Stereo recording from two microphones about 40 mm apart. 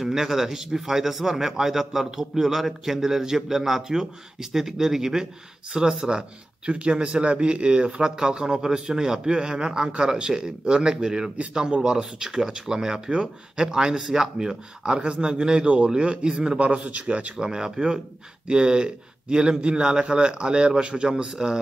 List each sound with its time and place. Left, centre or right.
0.0 s speech: centre
15.0 s a man's voice: right
16.5 s speech: right
17.4 s a man's voice: centre